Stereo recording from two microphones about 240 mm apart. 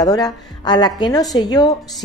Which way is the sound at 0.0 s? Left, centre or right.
Centre.